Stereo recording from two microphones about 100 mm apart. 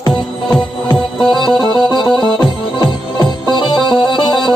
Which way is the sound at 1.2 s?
5° left (ahead or behind).